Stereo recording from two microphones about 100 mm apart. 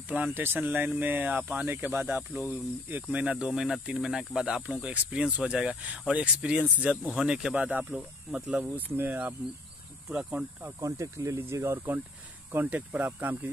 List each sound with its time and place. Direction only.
0.1 s speech: 20° right (ahead or behind)
8.7 s speech: 20° right (ahead or behind)
10.8 s speech: 30° right (ahead or behind)